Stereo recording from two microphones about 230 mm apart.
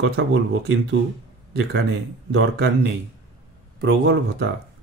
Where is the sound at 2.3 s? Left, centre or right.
Right.